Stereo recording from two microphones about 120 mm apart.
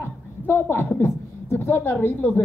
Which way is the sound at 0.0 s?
20° left (ahead or behind).